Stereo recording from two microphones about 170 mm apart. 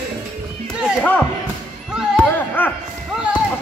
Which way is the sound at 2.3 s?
10° left (ahead or behind).